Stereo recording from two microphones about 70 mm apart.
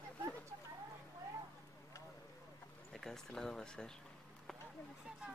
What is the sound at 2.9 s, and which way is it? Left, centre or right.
Speech, centre.